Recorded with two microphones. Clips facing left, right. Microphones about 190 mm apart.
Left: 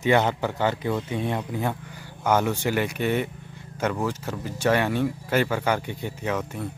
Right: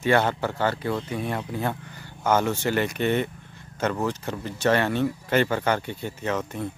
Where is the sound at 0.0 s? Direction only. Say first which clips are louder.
Left 1 dB; 15° left (ahead or behind).